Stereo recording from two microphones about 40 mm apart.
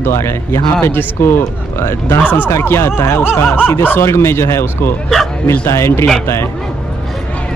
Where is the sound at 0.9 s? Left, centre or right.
Left.